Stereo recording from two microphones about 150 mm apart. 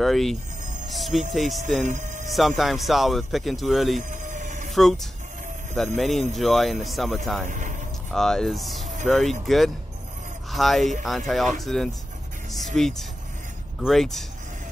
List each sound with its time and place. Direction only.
0.0 s speech: centre (ahead or behind)
1.8 s speech: 55° right (ahead or behind)
2.3 s speech: centre (ahead or behind)
4.1 s a sound: 55° right (ahead or behind)
4.6 s a sound: centre (ahead or behind)
5.9 s speech: centre (ahead or behind)
7.4 s speech: 55° right (ahead or behind)
8.1 s speech: 5° left (ahead or behind)